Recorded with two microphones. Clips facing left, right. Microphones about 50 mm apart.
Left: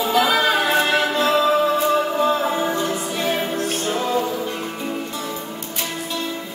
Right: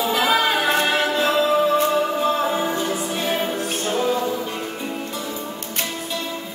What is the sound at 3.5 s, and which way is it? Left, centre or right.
Music, centre.